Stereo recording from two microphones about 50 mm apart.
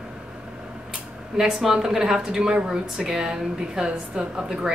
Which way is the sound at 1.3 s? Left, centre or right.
Centre.